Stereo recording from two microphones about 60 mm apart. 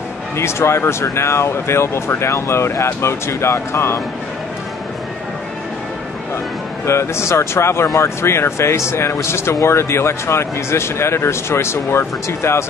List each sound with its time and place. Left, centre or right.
0.4 s speech: left
6.9 s speech: left